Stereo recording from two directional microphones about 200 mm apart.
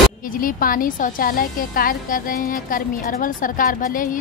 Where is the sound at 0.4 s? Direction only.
45° left (ahead or behind).